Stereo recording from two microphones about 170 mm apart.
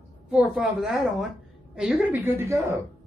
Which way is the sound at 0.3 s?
5° right (ahead or behind).